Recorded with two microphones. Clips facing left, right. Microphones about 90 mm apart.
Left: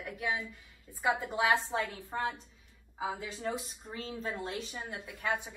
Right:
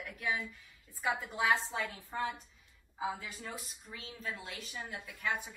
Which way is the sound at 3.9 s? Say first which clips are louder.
Left 5 dB; 35° left (ahead or behind).